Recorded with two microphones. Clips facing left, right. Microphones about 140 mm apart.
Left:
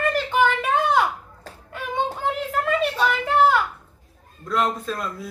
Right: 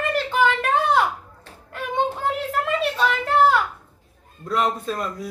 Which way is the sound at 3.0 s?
5° left (ahead or behind).